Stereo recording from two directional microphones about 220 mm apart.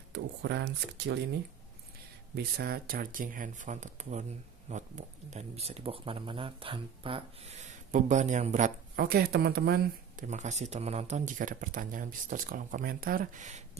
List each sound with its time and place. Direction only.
0.1 s speech: 50° right (ahead or behind)
2.3 s speech: 45° right (ahead or behind)
10.2 s speech: 30° right (ahead or behind)